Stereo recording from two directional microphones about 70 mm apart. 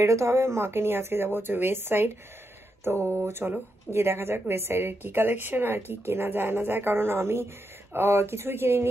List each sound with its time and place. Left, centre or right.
0.0 s speech: right